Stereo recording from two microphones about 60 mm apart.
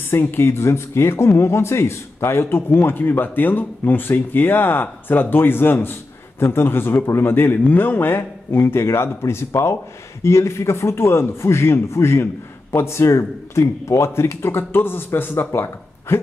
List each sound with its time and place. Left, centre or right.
0.1 s speech: left